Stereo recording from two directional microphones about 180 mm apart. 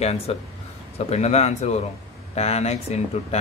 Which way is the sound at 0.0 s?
35° left (ahead or behind).